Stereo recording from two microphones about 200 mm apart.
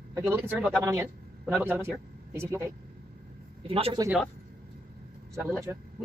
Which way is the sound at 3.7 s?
30° right (ahead or behind).